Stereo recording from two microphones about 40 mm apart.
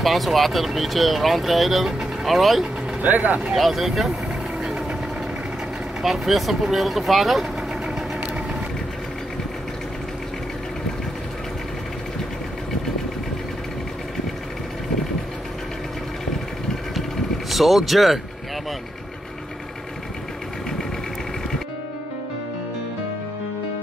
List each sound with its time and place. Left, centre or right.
0.0 s speech: centre
3.0 s speech: right
3.5 s speech: centre
6.0 s speech: centre
17.5 s speech: centre